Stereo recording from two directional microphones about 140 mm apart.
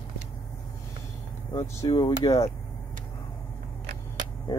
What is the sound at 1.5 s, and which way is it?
Speech, 25° left (ahead or behind).